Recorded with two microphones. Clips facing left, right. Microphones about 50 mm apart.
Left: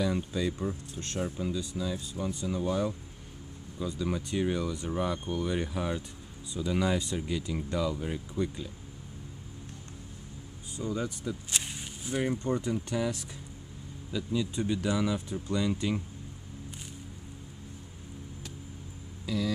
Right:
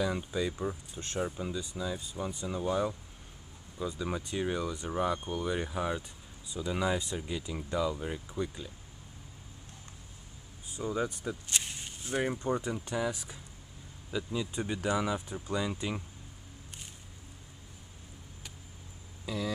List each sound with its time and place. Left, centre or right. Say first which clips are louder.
0.1 s speech: left 2 dB; centre
10.8 s speech: even; centre
11.5 s a sound: left 1 dB; centre
12.1 s speech: left 1 dB; centre
15.0 s speech: left 2 dB; centre
19.2 s speech: left 4 dB; centre